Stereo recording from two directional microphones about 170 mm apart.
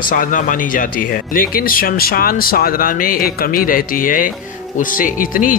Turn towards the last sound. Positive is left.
turn(degrees=50)  # may be behind; listen again after turning